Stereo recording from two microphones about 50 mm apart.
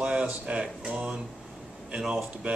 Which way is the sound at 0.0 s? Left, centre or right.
Right.